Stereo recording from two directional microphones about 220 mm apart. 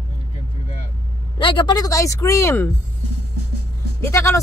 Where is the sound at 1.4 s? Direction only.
20° left (ahead or behind).